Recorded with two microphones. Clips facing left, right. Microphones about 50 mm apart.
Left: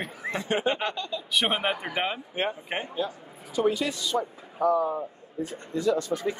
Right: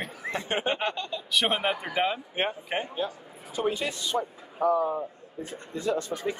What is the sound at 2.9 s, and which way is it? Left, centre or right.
A man's voice, right.